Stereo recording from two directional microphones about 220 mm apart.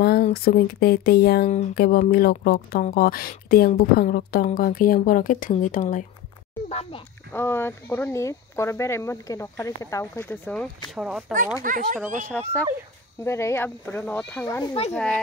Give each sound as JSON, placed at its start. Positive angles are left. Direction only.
{"t": 0.0, "sound": "a child's voice", "side_deg": 45}
{"t": 7.3, "sound": "speech", "side_deg": 10}
{"t": 11.6, "sound": "speech", "side_deg": -35}
{"t": 12.3, "sound": "speech", "side_deg": 5}